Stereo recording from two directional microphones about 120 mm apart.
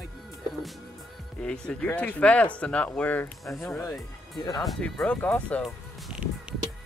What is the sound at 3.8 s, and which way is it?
Speech, 30° left (ahead or behind).